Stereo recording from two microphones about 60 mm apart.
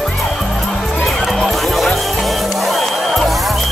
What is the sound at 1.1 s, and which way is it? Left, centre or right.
Music, centre.